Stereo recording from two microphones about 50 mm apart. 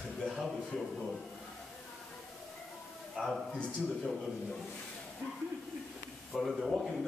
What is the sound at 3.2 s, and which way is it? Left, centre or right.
Speech, right.